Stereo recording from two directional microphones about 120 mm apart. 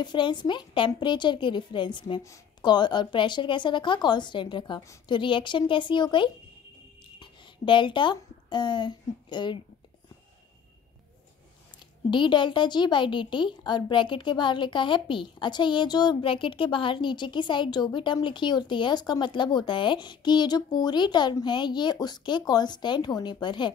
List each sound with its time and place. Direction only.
0.0 s a woman's voice: 40° left (ahead or behind)
12.1 s a woman's voice: 40° left (ahead or behind)